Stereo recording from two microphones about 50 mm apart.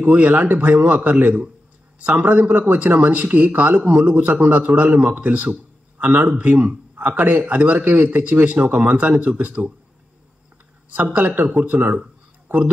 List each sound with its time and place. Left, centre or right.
0.0 s a man's voice: right
11.1 s speech: right